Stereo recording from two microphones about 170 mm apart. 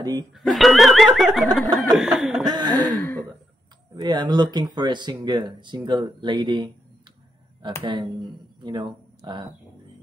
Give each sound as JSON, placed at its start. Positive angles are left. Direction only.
{"t": 0.0, "sound": "speech", "side_deg": -20}
{"t": 0.3, "sound": "speech", "side_deg": 0}
{"t": 2.4, "sound": "a sound", "side_deg": -25}
{"t": 3.0, "sound": "throat clearing", "side_deg": 10}
{"t": 3.9, "sound": "speech", "side_deg": -25}